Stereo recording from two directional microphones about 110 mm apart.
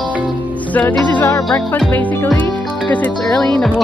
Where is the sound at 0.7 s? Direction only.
15° left (ahead or behind).